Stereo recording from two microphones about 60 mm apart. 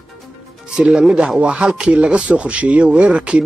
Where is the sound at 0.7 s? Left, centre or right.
Centre.